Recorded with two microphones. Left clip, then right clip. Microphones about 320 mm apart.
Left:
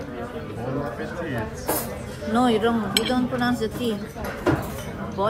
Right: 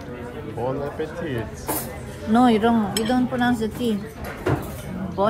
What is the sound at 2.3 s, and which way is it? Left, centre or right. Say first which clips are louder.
A woman's voice: right 3 dB; right.